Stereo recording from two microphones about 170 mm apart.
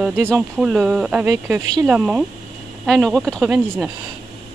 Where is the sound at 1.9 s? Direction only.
5° right (ahead or behind).